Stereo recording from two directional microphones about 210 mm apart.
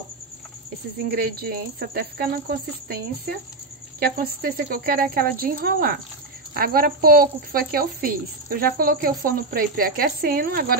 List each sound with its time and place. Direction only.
1.0 s a woman's voice: 50° right (ahead or behind)